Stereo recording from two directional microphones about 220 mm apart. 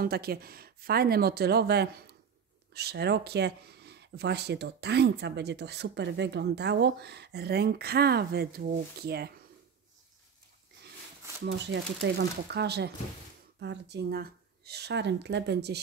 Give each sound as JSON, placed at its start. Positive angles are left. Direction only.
{"t": 0.0, "sound": "speech", "side_deg": -45}
{"t": 11.4, "sound": "speech", "side_deg": -55}